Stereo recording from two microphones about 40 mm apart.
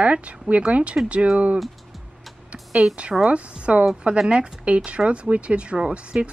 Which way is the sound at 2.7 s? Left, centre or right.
Centre.